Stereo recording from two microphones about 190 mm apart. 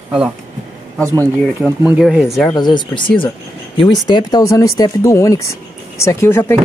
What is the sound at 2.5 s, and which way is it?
Speech, 25° left (ahead or behind).